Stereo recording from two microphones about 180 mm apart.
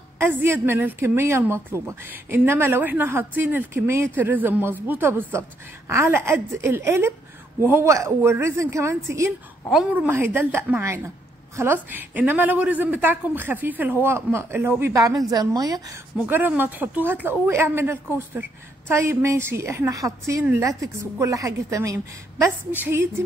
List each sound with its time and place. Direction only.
0.2 s a woman's voice: 15° right (ahead or behind)